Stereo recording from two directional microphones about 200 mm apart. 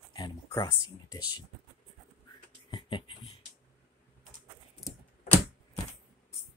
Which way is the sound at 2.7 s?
25° left (ahead or behind).